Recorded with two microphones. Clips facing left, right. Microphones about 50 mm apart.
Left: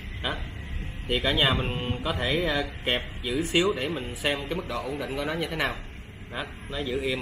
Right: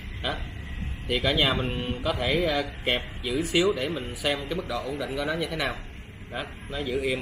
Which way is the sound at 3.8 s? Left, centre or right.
Left.